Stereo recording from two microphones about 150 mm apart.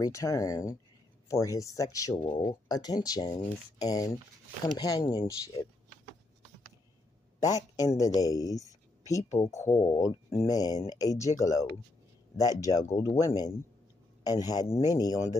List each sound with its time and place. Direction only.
0.0 s speech: 20° left (ahead or behind)
7.3 s a man's voice: 25° left (ahead or behind)